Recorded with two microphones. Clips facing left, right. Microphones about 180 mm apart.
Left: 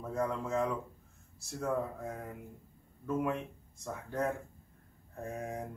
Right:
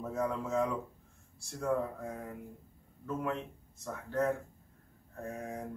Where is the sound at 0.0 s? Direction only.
5° right (ahead or behind).